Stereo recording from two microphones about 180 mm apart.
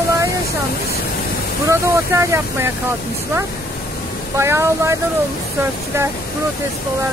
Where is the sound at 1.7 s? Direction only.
15° right (ahead or behind).